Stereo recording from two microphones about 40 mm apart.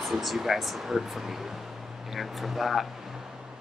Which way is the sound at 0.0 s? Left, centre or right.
Centre.